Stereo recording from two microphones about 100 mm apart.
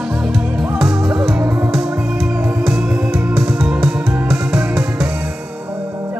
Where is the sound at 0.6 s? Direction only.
5° right (ahead or behind).